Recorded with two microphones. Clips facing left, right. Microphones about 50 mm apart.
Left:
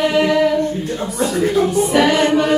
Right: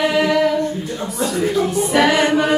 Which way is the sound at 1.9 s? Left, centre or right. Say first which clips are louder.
Even; centre.